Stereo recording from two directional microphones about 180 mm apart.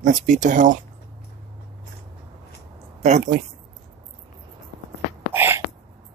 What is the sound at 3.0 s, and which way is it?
Speech, 40° right (ahead or behind).